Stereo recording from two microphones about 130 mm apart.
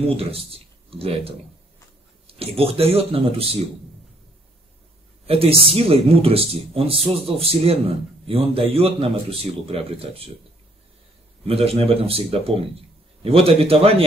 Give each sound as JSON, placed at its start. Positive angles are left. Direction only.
{"t": 0.0, "sound": "speech", "side_deg": -50}
{"t": 5.2, "sound": "speech", "side_deg": -50}
{"t": 11.4, "sound": "speech", "side_deg": -50}